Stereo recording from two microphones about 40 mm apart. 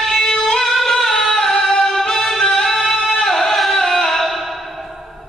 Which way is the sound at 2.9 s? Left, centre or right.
Left.